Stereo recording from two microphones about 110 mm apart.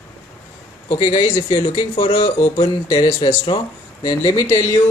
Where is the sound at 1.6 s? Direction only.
40° left (ahead or behind).